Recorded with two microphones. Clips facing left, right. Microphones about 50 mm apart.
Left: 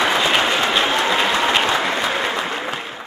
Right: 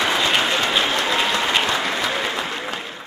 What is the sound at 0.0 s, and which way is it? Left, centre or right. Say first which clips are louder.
Applause: left 2 dB; centre.